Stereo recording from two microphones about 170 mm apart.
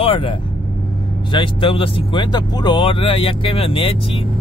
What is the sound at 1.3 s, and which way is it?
Speech, 30° left (ahead or behind).